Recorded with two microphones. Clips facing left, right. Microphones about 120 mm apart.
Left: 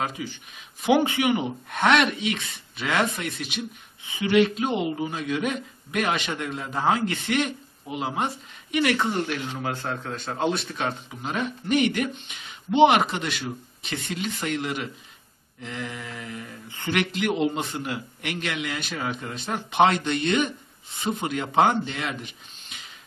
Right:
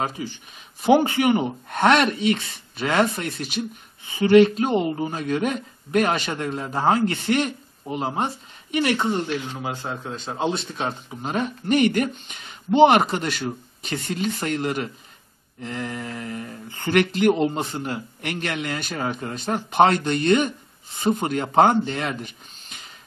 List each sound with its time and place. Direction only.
0.8 s speech: 40° right (ahead or behind)
9.0 s speech: centre (ahead or behind); by 11.0 s 25° right (ahead or behind)
11.2 s speech: 40° right (ahead or behind)